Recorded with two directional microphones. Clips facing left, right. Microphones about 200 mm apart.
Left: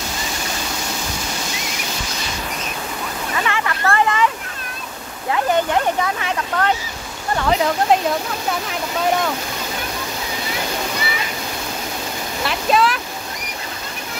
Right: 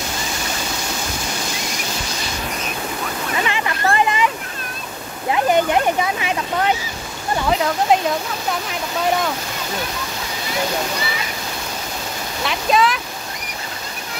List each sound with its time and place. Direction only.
3.4 s a sound: 20° right (ahead or behind)
5.3 s speech: 15° right (ahead or behind)
7.3 s speech: centre (ahead or behind)
12.4 s speech: centre (ahead or behind)